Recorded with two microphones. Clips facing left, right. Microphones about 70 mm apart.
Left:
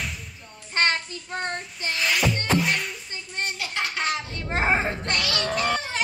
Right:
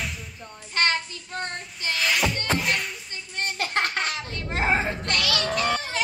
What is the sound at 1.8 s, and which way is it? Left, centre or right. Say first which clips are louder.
Music: right 1 dB; centre.